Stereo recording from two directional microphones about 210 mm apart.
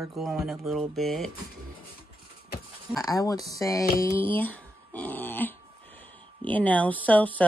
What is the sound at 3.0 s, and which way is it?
Speech, 15° left (ahead or behind).